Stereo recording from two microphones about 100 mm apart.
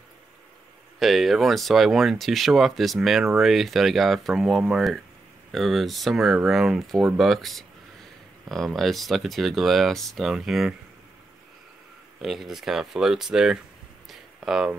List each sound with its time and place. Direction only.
0.9 s speech: centre (ahead or behind)
12.2 s speech: centre (ahead or behind)
14.0 s a sound: 5° right (ahead or behind)